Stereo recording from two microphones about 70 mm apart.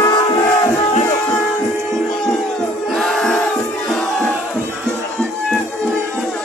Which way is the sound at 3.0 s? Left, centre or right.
Centre.